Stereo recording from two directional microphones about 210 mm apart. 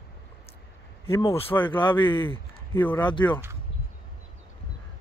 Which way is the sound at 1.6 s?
20° left (ahead or behind).